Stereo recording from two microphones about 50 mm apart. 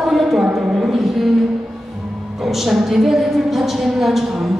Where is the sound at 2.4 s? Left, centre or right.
Centre.